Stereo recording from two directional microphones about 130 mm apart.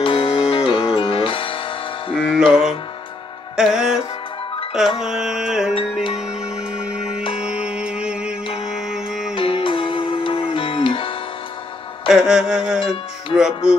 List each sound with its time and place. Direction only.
0.0 s music: 45° left (ahead or behind)
2.1 s music: 5° right (ahead or behind)
5.0 s music: 5° right (ahead or behind)
6.8 s music: 5° right (ahead or behind)
9.3 s music: 45° left (ahead or behind)
12.1 s music: 5° right (ahead or behind)